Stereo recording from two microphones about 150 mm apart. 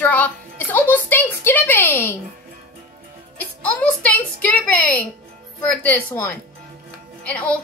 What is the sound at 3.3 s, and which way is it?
A woman's voice, 10° left (ahead or behind).